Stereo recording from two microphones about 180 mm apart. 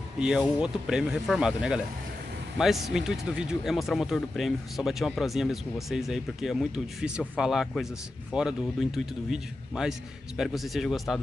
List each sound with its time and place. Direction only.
0.2 s speech: 5° right (ahead or behind)